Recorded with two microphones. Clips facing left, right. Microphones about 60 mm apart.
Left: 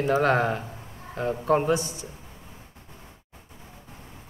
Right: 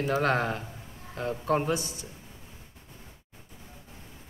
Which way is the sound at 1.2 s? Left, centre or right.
Centre.